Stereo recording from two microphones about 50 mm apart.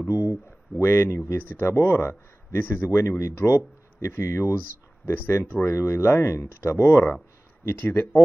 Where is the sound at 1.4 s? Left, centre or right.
Left.